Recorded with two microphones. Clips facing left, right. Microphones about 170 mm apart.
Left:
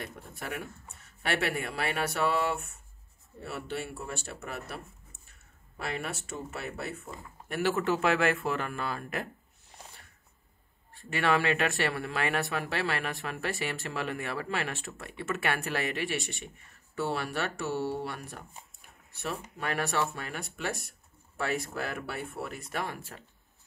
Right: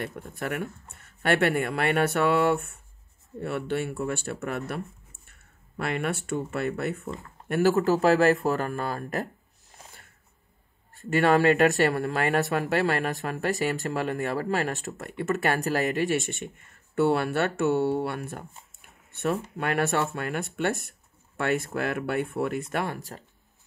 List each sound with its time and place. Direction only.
0.4 s speech: 60° right (ahead or behind)
7.4 s speech: 45° right (ahead or behind)
11.0 s speech: 45° right (ahead or behind)
19.5 s speech: 55° right (ahead or behind)
22.9 s speech: 35° right (ahead or behind)